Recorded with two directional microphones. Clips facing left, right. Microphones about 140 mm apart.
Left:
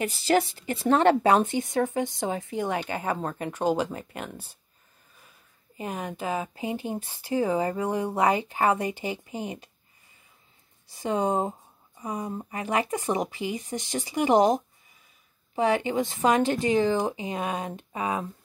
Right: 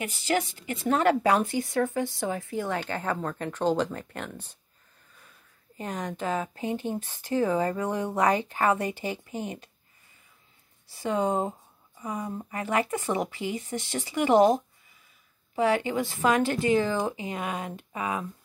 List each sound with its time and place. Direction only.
0.0 s speech: 35° left (ahead or behind); by 4.6 s 10° left (ahead or behind)
5.8 s speech: 10° left (ahead or behind)
10.9 s speech: 20° left (ahead or behind)